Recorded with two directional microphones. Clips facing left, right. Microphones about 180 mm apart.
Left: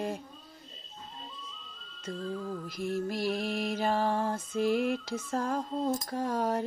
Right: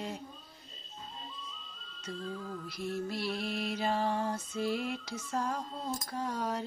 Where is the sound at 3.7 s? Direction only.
50° left (ahead or behind).